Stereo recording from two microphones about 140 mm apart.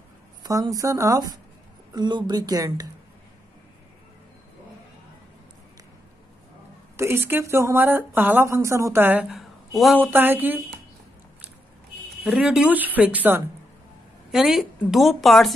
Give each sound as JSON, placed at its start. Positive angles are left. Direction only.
{"t": 0.4, "sound": "speech", "side_deg": -25}
{"t": 7.0, "sound": "speech", "side_deg": -15}
{"t": 12.3, "sound": "a woman's voice", "side_deg": -5}